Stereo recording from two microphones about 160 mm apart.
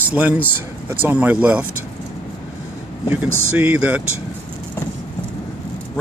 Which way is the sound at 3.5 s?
10° right (ahead or behind).